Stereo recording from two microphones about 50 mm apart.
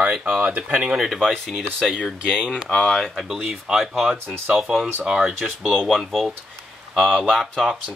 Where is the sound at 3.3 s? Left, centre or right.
Centre.